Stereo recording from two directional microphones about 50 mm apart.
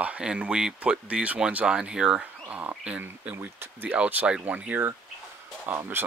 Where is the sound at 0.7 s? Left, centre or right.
Right.